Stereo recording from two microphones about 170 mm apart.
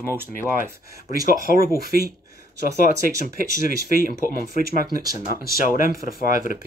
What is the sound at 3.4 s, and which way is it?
Speech, 55° left (ahead or behind).